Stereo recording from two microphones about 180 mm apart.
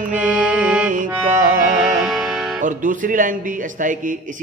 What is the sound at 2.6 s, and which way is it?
Speech, 45° right (ahead or behind).